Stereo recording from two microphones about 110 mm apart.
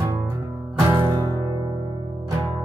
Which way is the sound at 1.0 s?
35° right (ahead or behind).